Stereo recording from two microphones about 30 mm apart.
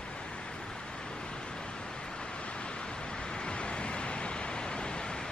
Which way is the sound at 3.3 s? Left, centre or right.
Left.